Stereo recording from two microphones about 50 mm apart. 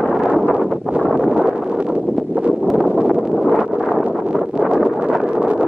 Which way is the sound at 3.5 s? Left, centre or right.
Centre.